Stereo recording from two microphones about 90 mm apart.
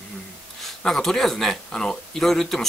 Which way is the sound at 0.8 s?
5° left (ahead or behind).